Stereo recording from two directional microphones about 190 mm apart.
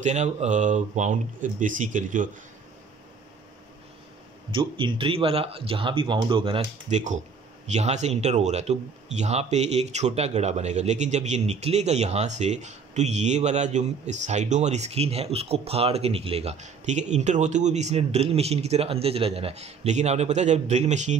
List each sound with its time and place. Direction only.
0.0 s speech: 40° right (ahead or behind)
4.5 s speech: 25° right (ahead or behind)